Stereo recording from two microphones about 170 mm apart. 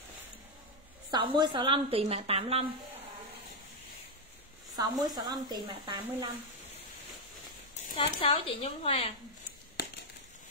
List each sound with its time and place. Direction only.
1.1 s a woman's voice: 25° right (ahead or behind)
4.7 s speech: 25° right (ahead or behind)
8.1 s speech: 35° left (ahead or behind)